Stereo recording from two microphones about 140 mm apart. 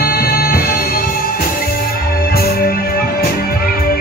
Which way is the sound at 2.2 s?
90° left.